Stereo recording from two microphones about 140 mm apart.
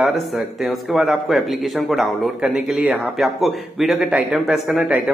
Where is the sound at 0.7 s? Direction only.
Centre (ahead or behind).